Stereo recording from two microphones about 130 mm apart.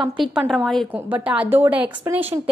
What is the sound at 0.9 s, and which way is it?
A woman's voice, 10° right (ahead or behind).